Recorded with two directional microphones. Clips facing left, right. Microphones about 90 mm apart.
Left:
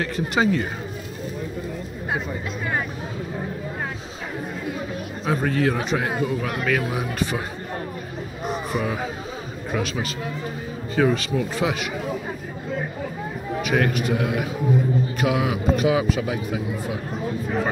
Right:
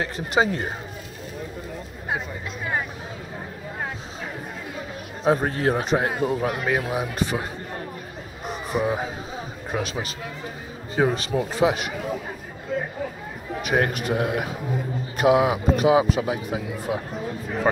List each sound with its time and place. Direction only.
0.0 s a man's voice: 25° right (ahead or behind)
5.2 s a man's voice: 35° right (ahead or behind)
5.9 s a man's voice: 35° right (ahead or behind)
6.6 s speech: 20° right (ahead or behind)
8.7 s speech: 25° right (ahead or behind)
11.0 s a man's voice: 35° right (ahead or behind)
13.7 s a man's voice: 35° right (ahead or behind)